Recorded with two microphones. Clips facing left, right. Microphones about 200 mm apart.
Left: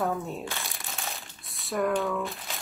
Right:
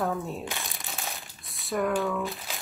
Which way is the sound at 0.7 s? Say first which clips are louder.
Even; centre (ahead or behind).